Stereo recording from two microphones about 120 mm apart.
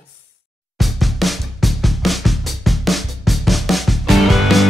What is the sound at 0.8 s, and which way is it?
Drum, centre (ahead or behind).